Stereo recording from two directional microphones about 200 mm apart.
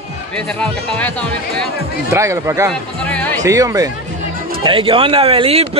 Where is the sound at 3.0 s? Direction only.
5° left (ahead or behind).